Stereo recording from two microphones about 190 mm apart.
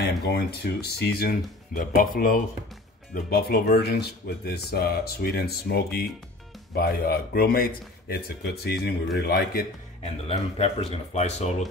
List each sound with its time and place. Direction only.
0.0 s speech: 60° left (ahead or behind)
1.8 s a man's voice: 45° left (ahead or behind)
10.0 s speech: 30° left (ahead or behind)